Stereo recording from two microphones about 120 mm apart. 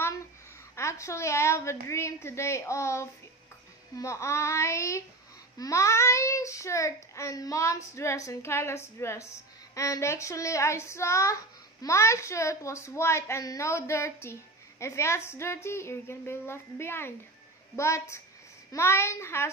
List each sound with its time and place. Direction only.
0.7 s a child's voice: 25° left (ahead or behind)